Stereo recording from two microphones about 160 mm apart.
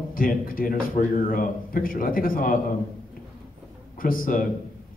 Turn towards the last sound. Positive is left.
turn(degrees=60)  # may be behind; listen again after turning